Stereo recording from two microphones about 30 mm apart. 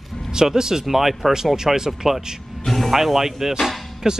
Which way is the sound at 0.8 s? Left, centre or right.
Centre.